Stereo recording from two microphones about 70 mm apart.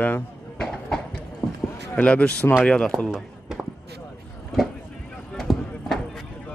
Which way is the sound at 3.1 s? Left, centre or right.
Centre.